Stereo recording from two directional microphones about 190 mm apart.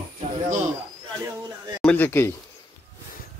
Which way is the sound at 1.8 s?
10° left (ahead or behind).